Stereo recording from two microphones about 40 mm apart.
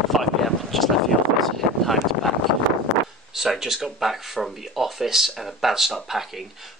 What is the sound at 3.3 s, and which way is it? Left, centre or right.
Speech, centre.